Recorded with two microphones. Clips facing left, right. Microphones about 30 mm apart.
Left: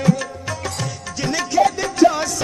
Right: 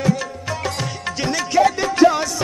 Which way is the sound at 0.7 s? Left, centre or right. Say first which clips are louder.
Right 3 dB; centre.